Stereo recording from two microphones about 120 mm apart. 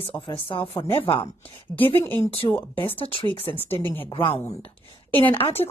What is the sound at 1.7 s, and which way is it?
Speech, 15° left (ahead or behind).